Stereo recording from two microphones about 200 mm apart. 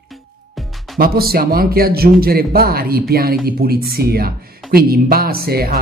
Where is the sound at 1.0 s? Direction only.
50° right (ahead or behind).